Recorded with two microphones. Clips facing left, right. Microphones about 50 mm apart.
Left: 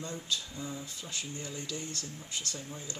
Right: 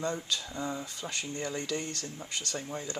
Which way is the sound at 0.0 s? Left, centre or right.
Right.